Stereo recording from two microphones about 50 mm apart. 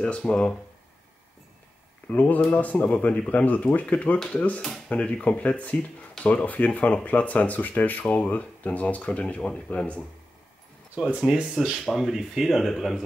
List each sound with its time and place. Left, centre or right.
0.0 s speech: left
2.1 s speech: left
11.1 s speech: centre